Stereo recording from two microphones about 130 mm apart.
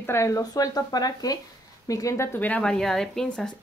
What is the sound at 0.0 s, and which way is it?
A woman's voice, 20° left (ahead or behind).